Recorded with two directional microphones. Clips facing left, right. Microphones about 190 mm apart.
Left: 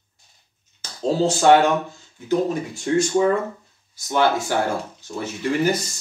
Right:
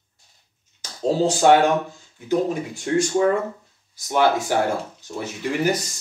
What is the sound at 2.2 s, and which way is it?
Speech, 15° right (ahead or behind).